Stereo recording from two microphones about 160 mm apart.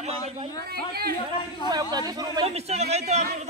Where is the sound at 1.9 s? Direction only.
25° right (ahead or behind).